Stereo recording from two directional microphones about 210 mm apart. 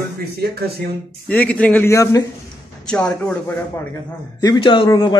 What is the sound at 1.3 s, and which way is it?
A man's voice, 5° left (ahead or behind).